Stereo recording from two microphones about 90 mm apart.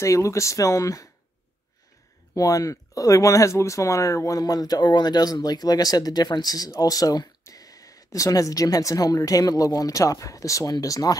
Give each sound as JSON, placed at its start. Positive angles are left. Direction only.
{"t": 0.0, "sound": "speech", "side_deg": 35}
{"t": 2.3, "sound": "speech", "side_deg": 40}